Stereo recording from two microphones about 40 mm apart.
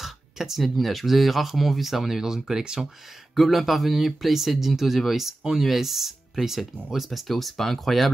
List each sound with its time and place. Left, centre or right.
0.0 s speech: centre
3.3 s speech: centre